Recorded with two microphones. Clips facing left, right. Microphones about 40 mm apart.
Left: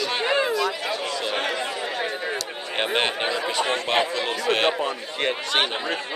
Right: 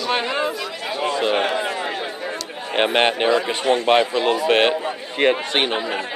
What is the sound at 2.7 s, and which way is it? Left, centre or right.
A man's voice, right.